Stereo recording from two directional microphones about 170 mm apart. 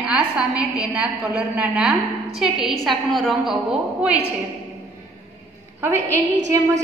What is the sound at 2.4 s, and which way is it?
A woman's voice, centre (ahead or behind).